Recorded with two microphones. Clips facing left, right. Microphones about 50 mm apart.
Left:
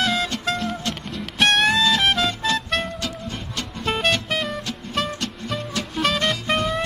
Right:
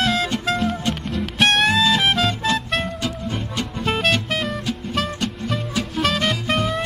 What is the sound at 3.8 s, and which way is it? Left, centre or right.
Music, centre.